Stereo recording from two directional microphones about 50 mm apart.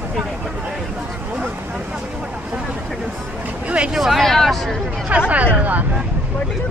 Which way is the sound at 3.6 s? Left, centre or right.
Right.